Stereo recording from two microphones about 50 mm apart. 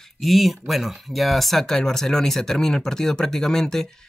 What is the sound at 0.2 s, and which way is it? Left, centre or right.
Speech, centre.